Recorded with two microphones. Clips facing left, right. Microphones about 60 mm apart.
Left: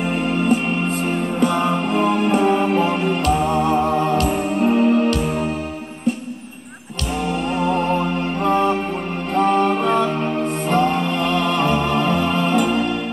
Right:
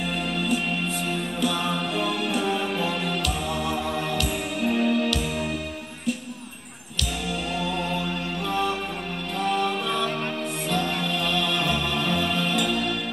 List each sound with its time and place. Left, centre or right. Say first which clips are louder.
0.0 s music: left 8 dB; left
7.5 s music: left 10 dB; left